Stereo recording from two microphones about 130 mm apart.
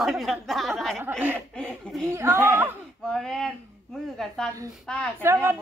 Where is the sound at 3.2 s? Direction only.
5° left (ahead or behind).